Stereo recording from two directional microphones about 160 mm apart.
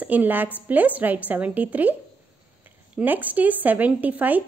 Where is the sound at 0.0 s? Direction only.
10° right (ahead or behind).